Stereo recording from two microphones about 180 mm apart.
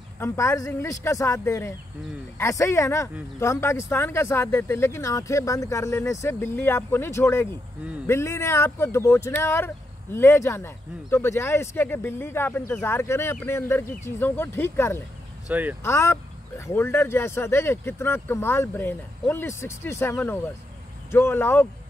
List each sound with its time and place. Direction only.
0.2 s speech: 15° left (ahead or behind)
15.4 s speech: 10° right (ahead or behind)
15.8 s speech: 15° left (ahead or behind)